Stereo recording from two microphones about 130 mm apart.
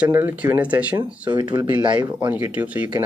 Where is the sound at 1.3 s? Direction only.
35° right (ahead or behind).